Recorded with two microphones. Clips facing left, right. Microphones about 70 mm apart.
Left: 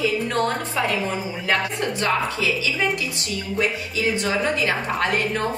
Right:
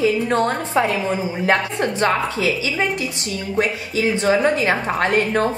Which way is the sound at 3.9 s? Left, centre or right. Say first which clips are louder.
Right 6 dB; right.